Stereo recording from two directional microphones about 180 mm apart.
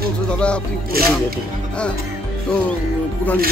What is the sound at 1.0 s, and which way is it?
Speech, 55° right (ahead or behind).